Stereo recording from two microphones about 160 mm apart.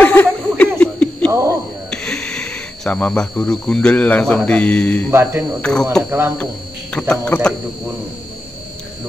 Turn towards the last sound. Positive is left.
turn(degrees=5)  # may be behind; listen again after turning